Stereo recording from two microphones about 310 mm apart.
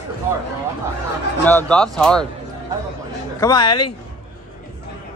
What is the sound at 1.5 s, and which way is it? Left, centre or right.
Speech, centre.